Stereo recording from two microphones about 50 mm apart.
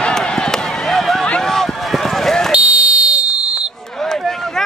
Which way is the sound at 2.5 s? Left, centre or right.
Right.